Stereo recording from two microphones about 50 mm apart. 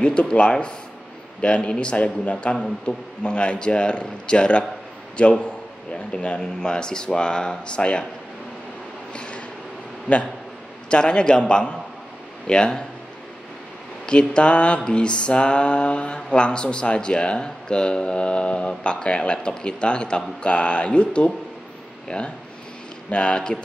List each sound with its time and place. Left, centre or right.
0.0 s mantra: left
2.5 s speech: centre
3.3 s mantra: centre
6.1 s speech: centre
9.1 s a sound: left
10.1 s mantra: left
10.9 s speech: centre
14.0 s mantra: left
22.0 s speech: centre
23.0 s mantra: left